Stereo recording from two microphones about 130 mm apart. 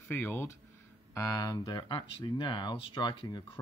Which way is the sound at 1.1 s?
25° left (ahead or behind).